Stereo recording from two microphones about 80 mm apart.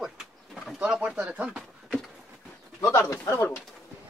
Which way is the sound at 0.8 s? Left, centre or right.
Centre.